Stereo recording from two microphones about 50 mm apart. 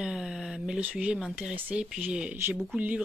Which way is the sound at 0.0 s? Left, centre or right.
Centre.